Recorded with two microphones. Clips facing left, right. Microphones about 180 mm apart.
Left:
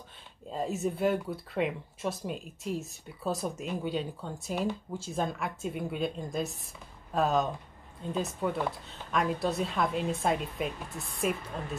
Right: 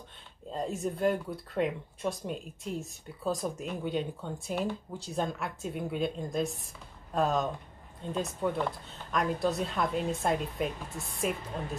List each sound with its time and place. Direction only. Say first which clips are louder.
0.5 s speech: left 1 dB; 5° left (ahead or behind)